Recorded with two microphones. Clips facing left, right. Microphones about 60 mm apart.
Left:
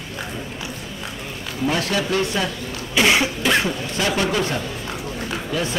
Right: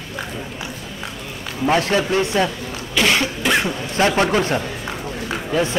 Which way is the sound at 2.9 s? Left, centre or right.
Centre.